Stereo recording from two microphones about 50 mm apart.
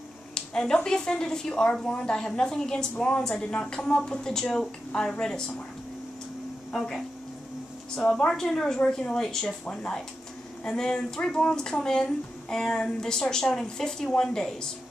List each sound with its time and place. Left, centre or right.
0.3 s a woman's voice: centre
6.7 s speech: centre